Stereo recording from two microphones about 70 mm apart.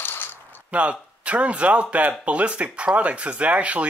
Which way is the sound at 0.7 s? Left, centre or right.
Centre.